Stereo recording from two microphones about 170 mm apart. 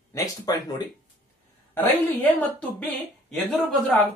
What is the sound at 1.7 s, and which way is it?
A woman's voice, 10° left (ahead or behind).